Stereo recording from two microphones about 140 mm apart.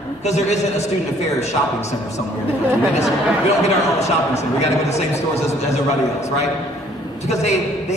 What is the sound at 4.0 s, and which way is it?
A man's voice, 50° left (ahead or behind).